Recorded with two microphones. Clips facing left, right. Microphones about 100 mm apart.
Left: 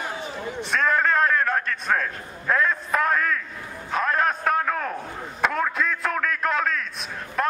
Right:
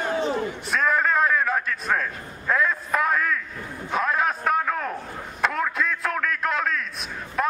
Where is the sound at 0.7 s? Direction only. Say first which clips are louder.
Left 1 dB; 5° right (ahead or behind).